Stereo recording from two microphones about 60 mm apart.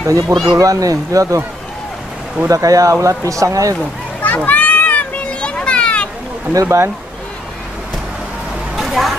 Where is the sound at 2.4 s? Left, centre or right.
Right.